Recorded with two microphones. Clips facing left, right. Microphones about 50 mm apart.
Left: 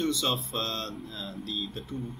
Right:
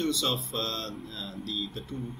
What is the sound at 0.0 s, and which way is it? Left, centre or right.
Speech, centre.